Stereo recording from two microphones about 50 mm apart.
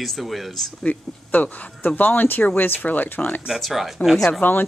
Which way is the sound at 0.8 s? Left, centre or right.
Left.